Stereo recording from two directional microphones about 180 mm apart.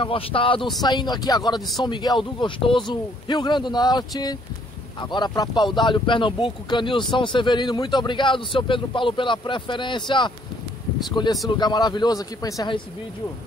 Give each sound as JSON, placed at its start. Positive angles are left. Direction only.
{"t": 0.0, "sound": "speech", "side_deg": 30}